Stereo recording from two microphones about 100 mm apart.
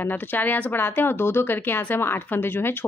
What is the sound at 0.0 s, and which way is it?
Speech, 20° left (ahead or behind).